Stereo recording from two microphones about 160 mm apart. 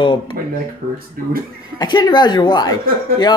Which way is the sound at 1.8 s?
25° left (ahead or behind).